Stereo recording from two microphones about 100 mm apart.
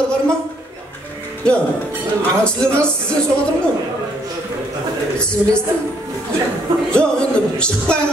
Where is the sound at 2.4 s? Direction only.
10° left (ahead or behind).